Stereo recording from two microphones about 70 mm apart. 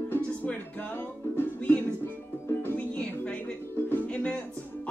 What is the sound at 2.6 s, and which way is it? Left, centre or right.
Music, left.